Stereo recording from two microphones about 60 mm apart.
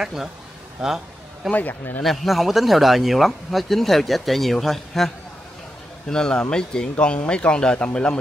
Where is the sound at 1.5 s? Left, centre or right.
Left.